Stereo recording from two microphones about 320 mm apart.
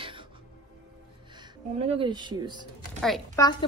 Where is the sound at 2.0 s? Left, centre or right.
Centre.